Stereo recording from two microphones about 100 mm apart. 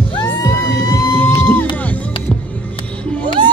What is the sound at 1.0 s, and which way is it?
Music, 20° left (ahead or behind).